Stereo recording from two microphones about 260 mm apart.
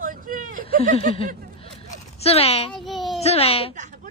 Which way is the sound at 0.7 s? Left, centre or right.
Left.